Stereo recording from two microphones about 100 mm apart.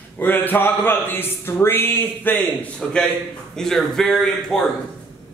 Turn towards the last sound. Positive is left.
turn(degrees=5)  # may be behind; listen again after turning